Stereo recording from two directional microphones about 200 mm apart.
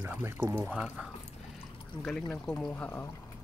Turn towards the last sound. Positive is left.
turn(degrees=10)  # may be behind; listen again after turning